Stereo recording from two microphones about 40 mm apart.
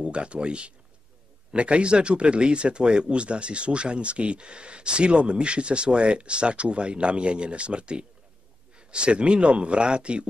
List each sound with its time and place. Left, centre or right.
0.0 s speech: right